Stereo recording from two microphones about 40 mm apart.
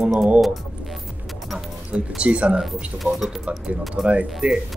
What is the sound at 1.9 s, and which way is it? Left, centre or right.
Speech, right.